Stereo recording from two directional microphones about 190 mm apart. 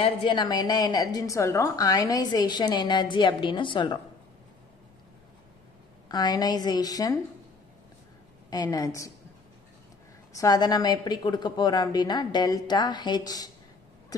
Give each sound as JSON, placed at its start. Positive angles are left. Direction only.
{"t": 0.0, "sound": "a woman's voice", "side_deg": 25}
{"t": 6.0, "sound": "a woman's voice", "side_deg": 20}
{"t": 8.5, "sound": "a woman's voice", "side_deg": 20}
{"t": 10.3, "sound": "a woman's voice", "side_deg": 20}